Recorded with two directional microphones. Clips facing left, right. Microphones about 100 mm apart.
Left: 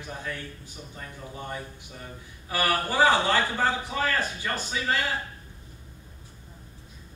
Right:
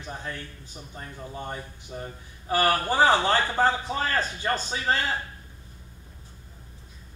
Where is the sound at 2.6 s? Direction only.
20° right (ahead or behind).